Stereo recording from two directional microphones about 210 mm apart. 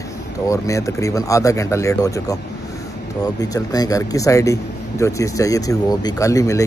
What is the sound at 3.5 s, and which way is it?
Speech, 15° left (ahead or behind).